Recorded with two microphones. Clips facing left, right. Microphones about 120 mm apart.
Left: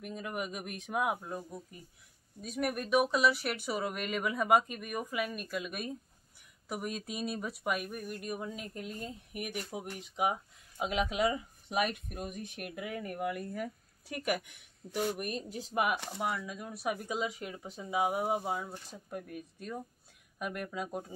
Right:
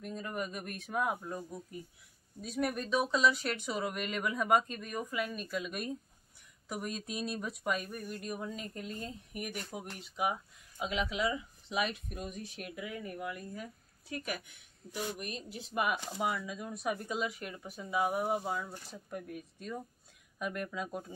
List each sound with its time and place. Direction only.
0.0 s speech: 10° left (ahead or behind)
10.1 s speech: 25° left (ahead or behind)
10.8 s a woman's voice: 40° left (ahead or behind); by 15.0 s 75° left (ahead or behind)
15.0 s speech: 50° left (ahead or behind)
16.1 s speech: 5° right (ahead or behind); by 21.0 s 15° left (ahead or behind)